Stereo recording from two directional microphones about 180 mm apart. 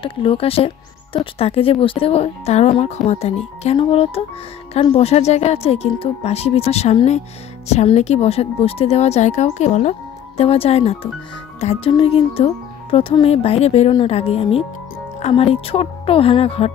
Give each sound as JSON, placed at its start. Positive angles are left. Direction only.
{"t": 0.0, "sound": "speech", "side_deg": 30}